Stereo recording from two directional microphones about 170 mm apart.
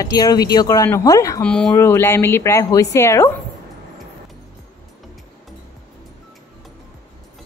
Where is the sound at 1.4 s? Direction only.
5° left (ahead or behind).